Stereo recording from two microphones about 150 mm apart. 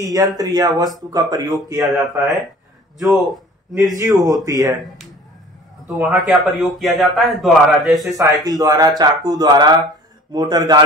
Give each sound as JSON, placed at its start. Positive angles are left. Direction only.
{"t": 0.0, "sound": "speech", "side_deg": -25}
{"t": 3.1, "sound": "a man's voice", "side_deg": 0}
{"t": 3.9, "sound": "speech", "side_deg": -25}
{"t": 5.9, "sound": "a man's voice", "side_deg": -5}
{"t": 8.2, "sound": "speech", "side_deg": -25}